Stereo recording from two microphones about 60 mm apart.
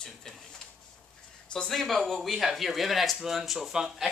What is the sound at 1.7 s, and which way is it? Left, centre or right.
Speech, centre.